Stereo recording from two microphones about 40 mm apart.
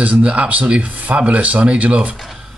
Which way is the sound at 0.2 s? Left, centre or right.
Right.